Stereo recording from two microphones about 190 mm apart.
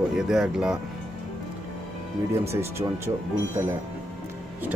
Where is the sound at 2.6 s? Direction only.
15° right (ahead or behind).